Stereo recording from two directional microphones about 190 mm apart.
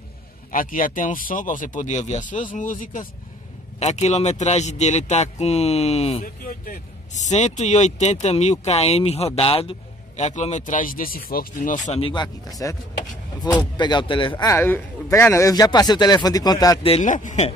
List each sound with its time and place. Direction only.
0.5 s speech: 45° left (ahead or behind)
6.2 s speech: 45° left (ahead or behind)
12.0 s a man's voice: 25° left (ahead or behind)
14.4 s a man's voice: 15° left (ahead or behind)
16.8 s speech: 35° left (ahead or behind)